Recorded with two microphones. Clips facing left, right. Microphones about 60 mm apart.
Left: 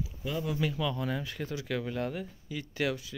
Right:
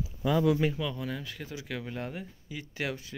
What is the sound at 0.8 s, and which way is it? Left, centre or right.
Speech, centre.